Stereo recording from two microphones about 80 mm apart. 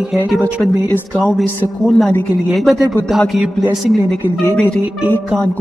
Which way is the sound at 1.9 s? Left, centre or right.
Centre.